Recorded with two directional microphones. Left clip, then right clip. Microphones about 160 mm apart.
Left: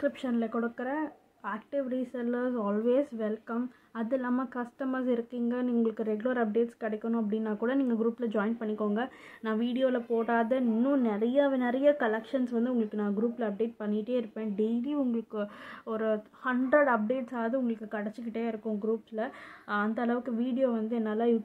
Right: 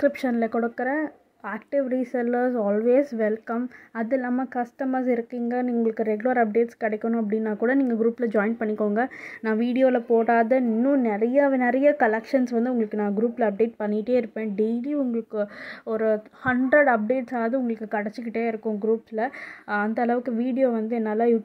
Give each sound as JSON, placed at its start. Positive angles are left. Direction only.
{"t": 0.0, "sound": "a woman's voice", "side_deg": -40}
{"t": 15.9, "sound": "a woman's voice", "side_deg": -30}